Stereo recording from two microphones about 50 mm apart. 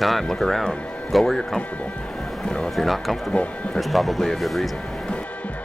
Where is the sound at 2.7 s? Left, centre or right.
Centre.